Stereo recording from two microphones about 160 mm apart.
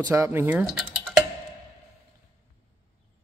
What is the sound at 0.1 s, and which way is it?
Speech, 15° right (ahead or behind).